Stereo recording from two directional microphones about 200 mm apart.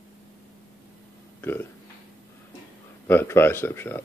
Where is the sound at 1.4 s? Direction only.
10° left (ahead or behind).